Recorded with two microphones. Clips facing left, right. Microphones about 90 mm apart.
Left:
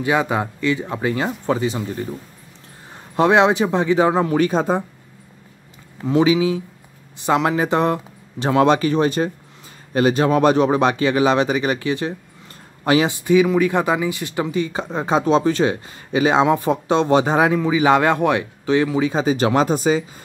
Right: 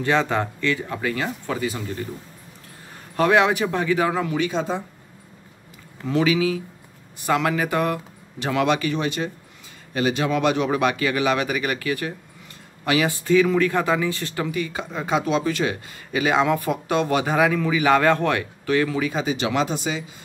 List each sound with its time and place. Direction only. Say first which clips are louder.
0.0 s speech: left 2 dB; 10° left (ahead or behind)
3.2 s speech: left 3 dB; 25° left (ahead or behind)
4.3 s speech: left 6 dB; 45° left (ahead or behind)
6.0 s speech: left 4 dB; 25° left (ahead or behind)
13.1 s speech: left 3 dB; 15° left (ahead or behind); by 20.1 s 40° left (ahead or behind)